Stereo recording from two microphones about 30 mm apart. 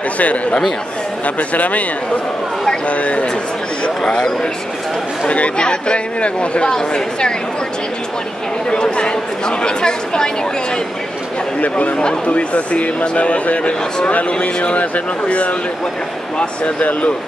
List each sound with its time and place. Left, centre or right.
0.2 s a man's voice: left
2.9 s a man's voice: left
4.0 s speech: left
5.6 s speech: left
8.6 s speech: left
12.3 s a man's voice: left